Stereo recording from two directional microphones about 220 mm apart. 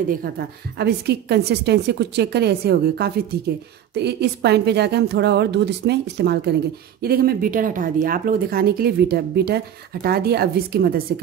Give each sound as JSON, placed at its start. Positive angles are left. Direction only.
{"t": 0.7, "sound": "speech", "side_deg": -50}